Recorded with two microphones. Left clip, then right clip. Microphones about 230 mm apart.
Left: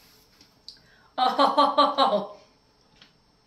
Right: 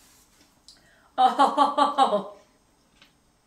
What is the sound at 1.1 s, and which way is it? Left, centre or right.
Speech, centre.